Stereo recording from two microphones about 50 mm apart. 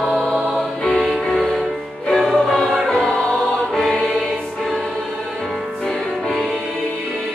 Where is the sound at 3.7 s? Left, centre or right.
Centre.